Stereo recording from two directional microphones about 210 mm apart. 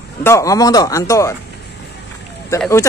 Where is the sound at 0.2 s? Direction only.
15° left (ahead or behind).